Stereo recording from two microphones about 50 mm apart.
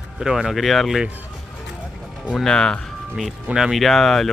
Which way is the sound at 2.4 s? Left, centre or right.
Centre.